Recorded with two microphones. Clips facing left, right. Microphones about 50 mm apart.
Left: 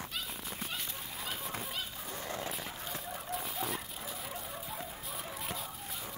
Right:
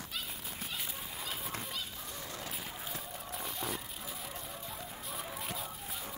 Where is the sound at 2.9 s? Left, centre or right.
Centre.